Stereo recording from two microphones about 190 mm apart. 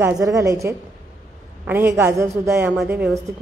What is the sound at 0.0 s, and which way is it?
A woman's voice, 15° right (ahead or behind).